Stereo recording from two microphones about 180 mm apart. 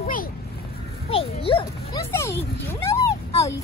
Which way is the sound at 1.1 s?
30° left (ahead or behind).